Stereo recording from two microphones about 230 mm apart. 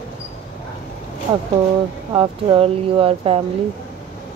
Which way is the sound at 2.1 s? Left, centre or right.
Right.